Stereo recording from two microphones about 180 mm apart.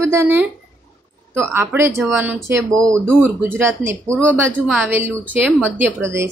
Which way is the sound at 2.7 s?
5° left (ahead or behind).